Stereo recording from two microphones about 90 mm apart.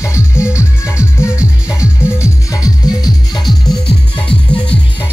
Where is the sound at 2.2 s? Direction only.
40° left (ahead or behind).